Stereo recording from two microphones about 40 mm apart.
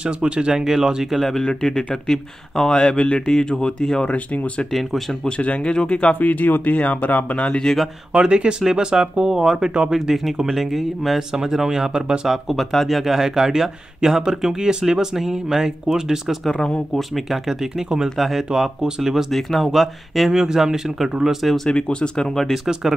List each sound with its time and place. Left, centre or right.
0.0 s speech: right
1.1 s speech: centre
1.4 s speech: centre
5.4 s speech: left
6.2 s speech: left
7.4 s speech: centre
8.1 s speech: right
12.3 s speech: centre
16.9 s speech: centre
19.3 s speech: centre
20.2 s speech: centre
21.7 s speech: left